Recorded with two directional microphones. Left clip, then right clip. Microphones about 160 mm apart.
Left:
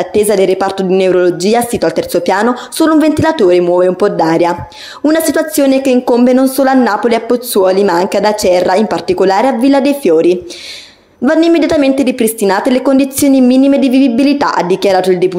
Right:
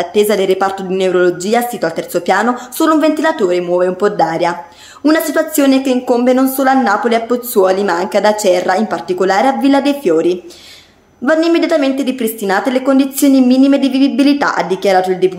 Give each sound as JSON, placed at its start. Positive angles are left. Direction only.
{"t": 0.0, "sound": "speech", "side_deg": 35}